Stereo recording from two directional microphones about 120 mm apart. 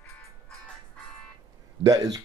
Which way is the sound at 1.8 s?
30° right (ahead or behind).